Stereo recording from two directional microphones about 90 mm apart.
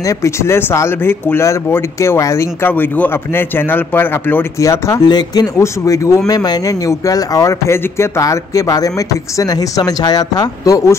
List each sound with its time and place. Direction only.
0.0 s speech: 35° left (ahead or behind)
2.7 s a man's voice: 20° left (ahead or behind)
4.6 s speech: 35° left (ahead or behind)
5.0 s speech: 50° left (ahead or behind)
5.6 s speech: 35° left (ahead or behind)